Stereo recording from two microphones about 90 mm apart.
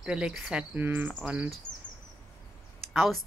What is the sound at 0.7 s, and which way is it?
Cricket, 20° right (ahead or behind).